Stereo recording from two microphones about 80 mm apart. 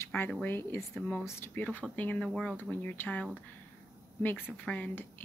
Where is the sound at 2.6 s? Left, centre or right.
Left.